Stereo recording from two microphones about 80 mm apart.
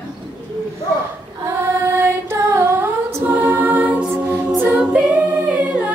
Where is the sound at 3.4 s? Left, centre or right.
Right.